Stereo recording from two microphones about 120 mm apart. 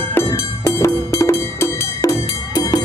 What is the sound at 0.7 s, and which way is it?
Music, 25° left (ahead or behind).